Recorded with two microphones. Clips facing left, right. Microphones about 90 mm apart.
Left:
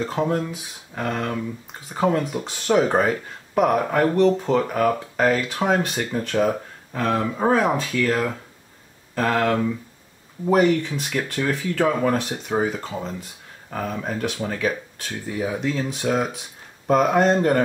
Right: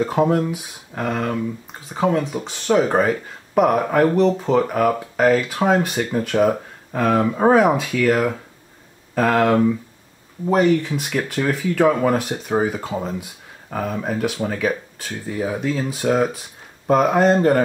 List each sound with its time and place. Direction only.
0.0 s speech: 10° right (ahead or behind)
10.4 s speech: centre (ahead or behind)